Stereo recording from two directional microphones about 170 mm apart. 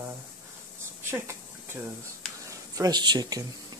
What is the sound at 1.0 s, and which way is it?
Speech, 15° right (ahead or behind).